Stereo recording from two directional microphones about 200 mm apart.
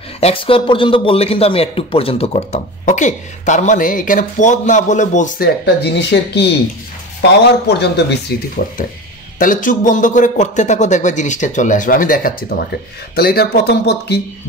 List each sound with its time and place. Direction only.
0.2 s speech: 25° left (ahead or behind)
5.8 s speech: 55° left (ahead or behind)
9.4 s speech: 40° left (ahead or behind)